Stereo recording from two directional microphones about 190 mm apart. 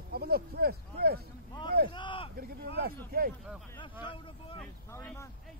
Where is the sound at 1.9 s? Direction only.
25° left (ahead or behind).